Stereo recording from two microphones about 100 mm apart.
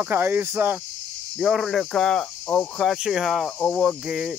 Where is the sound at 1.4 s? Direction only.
Centre (ahead or behind).